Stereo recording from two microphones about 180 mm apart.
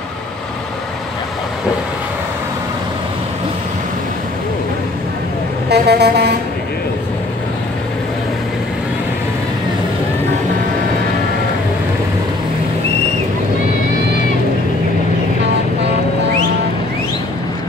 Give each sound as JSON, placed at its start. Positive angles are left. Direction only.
{"t": 5.7, "sound": "vehicle", "side_deg": -65}